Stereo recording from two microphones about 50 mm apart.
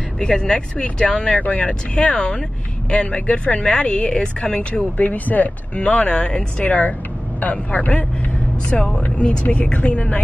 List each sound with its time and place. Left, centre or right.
0.2 s speech: centre
1.4 s speech: left
4.9 s speech: left
8.7 s speech: centre
9.2 s speech: left